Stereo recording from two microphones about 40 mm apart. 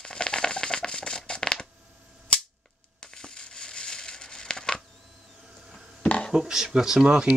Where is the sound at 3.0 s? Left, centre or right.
Centre.